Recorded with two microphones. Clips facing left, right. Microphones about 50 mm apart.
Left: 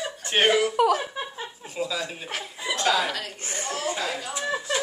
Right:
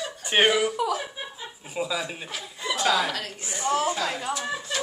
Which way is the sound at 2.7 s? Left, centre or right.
Centre.